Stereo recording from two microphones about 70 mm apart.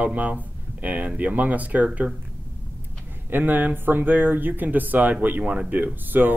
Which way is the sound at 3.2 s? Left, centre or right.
Right.